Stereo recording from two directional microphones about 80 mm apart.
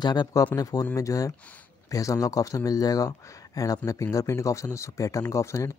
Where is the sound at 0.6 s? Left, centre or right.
Left.